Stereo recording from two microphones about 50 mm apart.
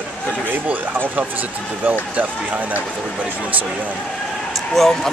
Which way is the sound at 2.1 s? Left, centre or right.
Right.